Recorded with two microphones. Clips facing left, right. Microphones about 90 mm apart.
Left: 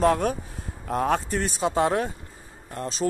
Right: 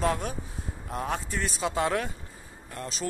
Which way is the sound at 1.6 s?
30° left (ahead or behind).